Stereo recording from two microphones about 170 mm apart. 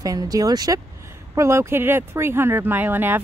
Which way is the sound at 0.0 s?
20° right (ahead or behind).